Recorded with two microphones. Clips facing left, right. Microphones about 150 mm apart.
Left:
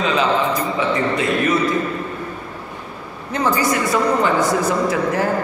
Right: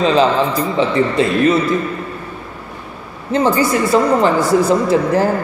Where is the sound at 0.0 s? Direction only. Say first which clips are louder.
Right 5 dB; 30° right (ahead or behind).